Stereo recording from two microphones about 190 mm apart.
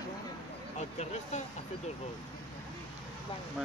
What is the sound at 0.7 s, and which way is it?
Speech, 35° left (ahead or behind).